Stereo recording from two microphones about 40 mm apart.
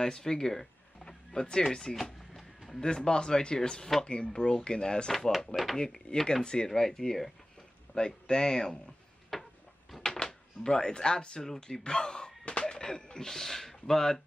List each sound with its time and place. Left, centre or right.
0.0 s speech: centre
2.0 s music: centre
2.8 s speech: centre
9.3 s a sound: centre
10.1 s speech: centre